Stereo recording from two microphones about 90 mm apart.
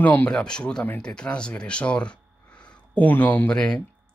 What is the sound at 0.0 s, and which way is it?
Speech, 20° left (ahead or behind).